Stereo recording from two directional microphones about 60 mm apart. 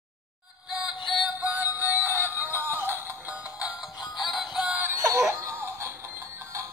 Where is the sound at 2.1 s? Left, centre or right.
Left.